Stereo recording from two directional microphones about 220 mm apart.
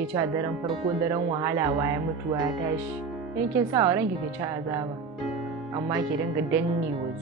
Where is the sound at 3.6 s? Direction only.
15° right (ahead or behind).